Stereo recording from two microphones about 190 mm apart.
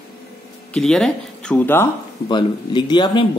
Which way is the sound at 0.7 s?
5° left (ahead or behind).